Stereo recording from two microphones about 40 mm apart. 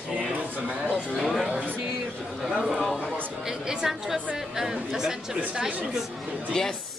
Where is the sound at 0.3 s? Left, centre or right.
Right.